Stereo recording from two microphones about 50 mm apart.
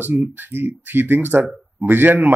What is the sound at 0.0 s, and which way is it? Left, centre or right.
A man's voice, right.